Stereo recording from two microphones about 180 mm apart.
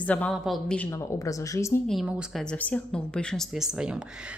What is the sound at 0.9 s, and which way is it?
Speech, 15° left (ahead or behind).